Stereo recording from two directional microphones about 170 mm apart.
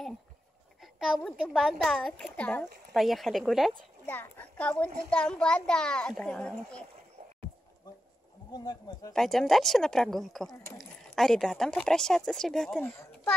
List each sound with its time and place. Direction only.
0.9 s a woman's voice: centre (ahead or behind)
8.5 s speech: 25° left (ahead or behind)
9.1 s a woman's voice: centre (ahead or behind)
12.9 s a child's voice: 15° left (ahead or behind)